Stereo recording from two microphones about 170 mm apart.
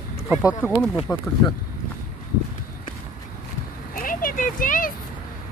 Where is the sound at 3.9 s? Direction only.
55° left (ahead or behind).